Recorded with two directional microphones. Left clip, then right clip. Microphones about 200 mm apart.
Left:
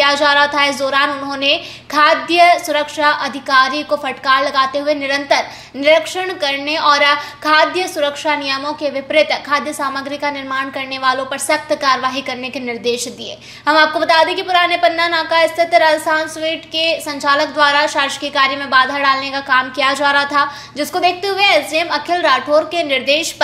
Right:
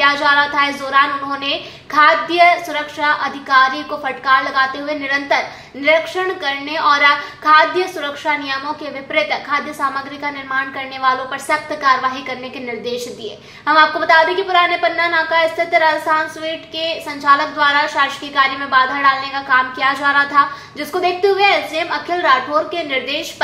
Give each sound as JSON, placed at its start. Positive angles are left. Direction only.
{"t": 0.0, "sound": "a woman's voice", "side_deg": 40}